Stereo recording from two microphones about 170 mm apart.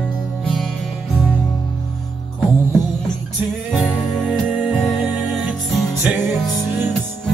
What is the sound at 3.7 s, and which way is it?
Music, centre (ahead or behind).